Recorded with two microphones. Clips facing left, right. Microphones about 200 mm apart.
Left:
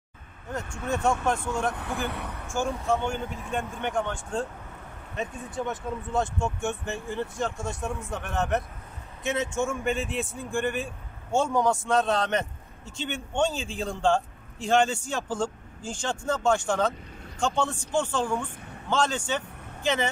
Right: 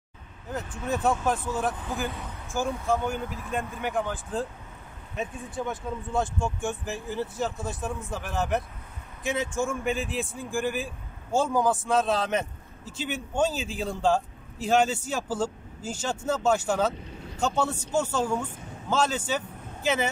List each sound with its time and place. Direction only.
0.8 s a man's voice: 5° right (ahead or behind)
1.7 s speech: 70° left (ahead or behind)
2.1 s a sound: 65° left (ahead or behind)
2.4 s a man's voice: centre (ahead or behind)